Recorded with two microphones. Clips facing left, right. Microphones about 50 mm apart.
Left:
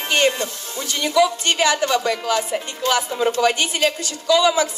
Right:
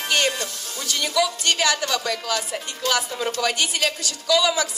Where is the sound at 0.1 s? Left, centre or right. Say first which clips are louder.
Left 4 dB; left.